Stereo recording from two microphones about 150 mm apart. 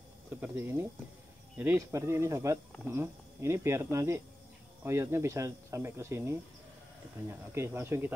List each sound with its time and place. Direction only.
0.3 s speech: 15° right (ahead or behind)